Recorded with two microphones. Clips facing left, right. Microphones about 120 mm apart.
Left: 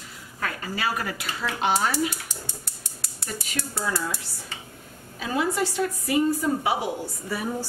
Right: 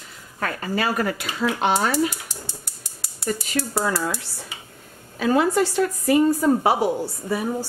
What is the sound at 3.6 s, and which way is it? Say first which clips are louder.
Speech: right 5 dB; 40° right (ahead or behind).